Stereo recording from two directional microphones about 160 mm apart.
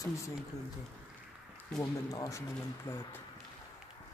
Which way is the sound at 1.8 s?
20° left (ahead or behind).